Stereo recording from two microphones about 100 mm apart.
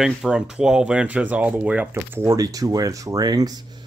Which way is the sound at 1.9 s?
25° right (ahead or behind).